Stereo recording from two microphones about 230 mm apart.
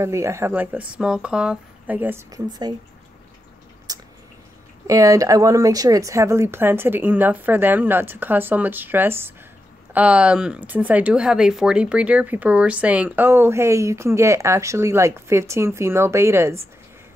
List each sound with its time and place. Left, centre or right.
0.0 s speech: centre
3.9 s drip: centre
4.8 s speech: centre